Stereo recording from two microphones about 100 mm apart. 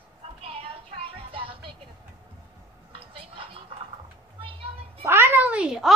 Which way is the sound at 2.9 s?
65° right (ahead or behind).